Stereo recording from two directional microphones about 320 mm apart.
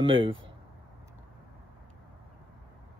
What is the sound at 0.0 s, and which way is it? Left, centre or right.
Speech, centre.